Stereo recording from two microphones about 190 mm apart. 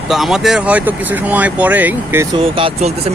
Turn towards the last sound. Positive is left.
turn(degrees=-35)  # may be behind; listen again after turning